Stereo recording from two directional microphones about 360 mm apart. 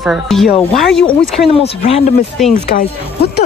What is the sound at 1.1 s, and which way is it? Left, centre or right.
Speech, centre.